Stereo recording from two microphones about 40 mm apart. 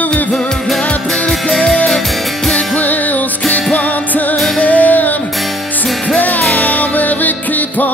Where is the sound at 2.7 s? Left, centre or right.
Left.